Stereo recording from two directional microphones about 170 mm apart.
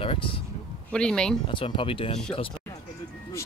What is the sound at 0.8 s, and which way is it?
Speech, 5° left (ahead or behind).